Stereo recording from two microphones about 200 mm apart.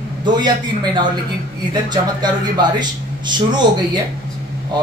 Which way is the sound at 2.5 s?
20° right (ahead or behind).